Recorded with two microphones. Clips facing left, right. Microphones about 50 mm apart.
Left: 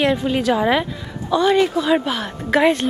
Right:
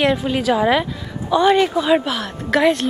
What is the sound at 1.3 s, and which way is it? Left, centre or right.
Speech, centre.